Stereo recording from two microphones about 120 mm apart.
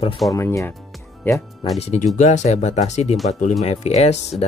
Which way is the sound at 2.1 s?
80° left.